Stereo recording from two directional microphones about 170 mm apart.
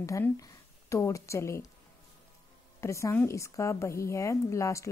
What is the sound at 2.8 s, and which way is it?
A woman's voice, 15° left (ahead or behind).